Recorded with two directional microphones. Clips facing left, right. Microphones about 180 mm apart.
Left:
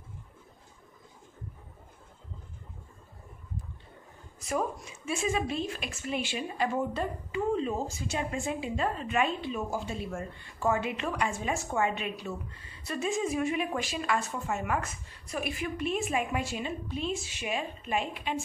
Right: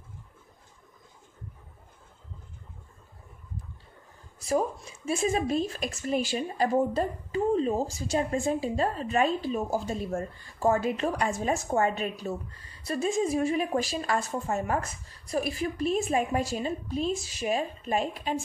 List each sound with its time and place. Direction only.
4.4 s speech: 30° right (ahead or behind)